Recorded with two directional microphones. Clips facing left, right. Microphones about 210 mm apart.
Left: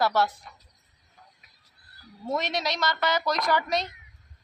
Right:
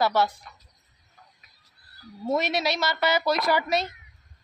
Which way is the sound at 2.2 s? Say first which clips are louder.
Right 4 dB; 10° right (ahead or behind).